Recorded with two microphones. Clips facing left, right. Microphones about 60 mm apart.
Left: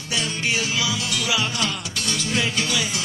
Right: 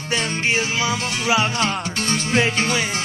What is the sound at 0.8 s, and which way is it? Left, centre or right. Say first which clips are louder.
Music: right 4 dB; right.